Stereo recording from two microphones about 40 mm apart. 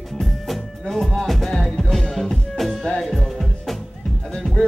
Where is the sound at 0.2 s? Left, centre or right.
Centre.